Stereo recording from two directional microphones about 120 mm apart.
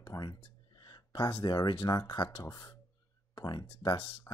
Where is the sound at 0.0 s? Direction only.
35° left (ahead or behind).